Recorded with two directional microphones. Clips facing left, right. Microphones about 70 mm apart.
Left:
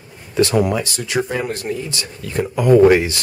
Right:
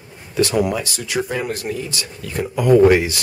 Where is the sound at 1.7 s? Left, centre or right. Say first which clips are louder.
Left 1 dB; centre.